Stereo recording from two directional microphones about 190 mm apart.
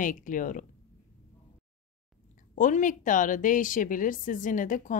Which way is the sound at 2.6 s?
45° left (ahead or behind).